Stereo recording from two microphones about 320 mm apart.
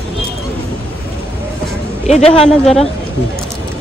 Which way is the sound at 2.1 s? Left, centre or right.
Centre.